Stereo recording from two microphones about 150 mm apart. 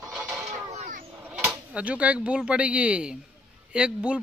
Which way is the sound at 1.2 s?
5° right (ahead or behind).